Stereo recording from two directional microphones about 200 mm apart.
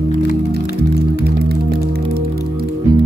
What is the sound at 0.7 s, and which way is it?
Music, 55° right (ahead or behind).